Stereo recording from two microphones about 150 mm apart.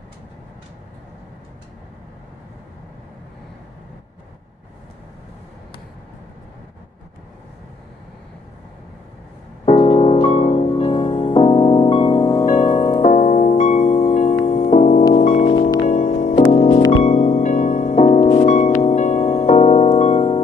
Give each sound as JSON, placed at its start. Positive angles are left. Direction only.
{"t": 9.7, "sound": "music", "side_deg": 40}
{"t": 12.4, "sound": "music", "side_deg": 55}
{"t": 16.3, "sound": "music", "side_deg": 45}